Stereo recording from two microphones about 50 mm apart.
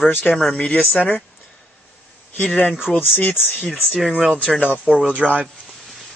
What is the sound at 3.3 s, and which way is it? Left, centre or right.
Speech, left.